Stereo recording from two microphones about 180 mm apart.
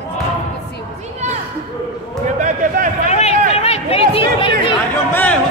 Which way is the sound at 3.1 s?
35° left (ahead or behind).